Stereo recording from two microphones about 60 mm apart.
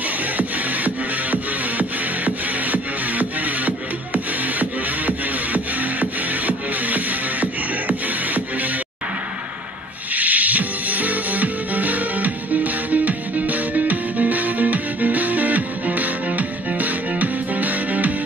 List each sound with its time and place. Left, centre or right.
0.4 s music: right
10.1 s music: right